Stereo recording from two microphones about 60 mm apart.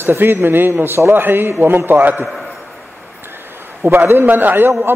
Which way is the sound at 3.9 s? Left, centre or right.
Right.